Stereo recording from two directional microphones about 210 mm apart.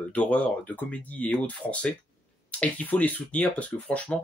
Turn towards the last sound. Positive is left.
turn(degrees=5)  # may be behind; listen again after turning